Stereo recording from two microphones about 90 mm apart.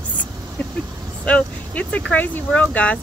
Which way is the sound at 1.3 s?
15° left (ahead or behind).